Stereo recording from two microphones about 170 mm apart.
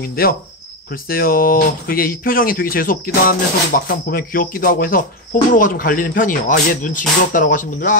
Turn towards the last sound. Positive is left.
turn(degrees=50)  # may be behind; listen again after turning